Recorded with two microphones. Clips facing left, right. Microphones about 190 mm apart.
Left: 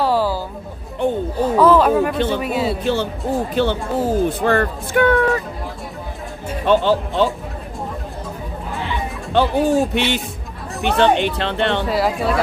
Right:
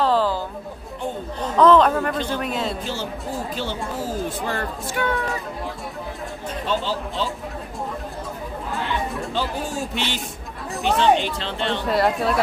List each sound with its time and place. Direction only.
0.0 s music: 10° left (ahead or behind)
1.0 s chatter: 60° left (ahead or behind)
1.4 s speech: 10° left (ahead or behind)
2.1 s speech: 65° left (ahead or behind)
2.4 s speech: 5° left (ahead or behind)
2.8 s speech: 60° left (ahead or behind)
6.6 s speech: 60° left (ahead or behind)
9.3 s speech: 60° left (ahead or behind)
11.8 s speech: centre (ahead or behind)